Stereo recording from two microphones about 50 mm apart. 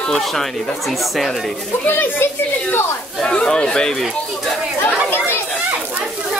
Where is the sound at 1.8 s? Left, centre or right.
Left.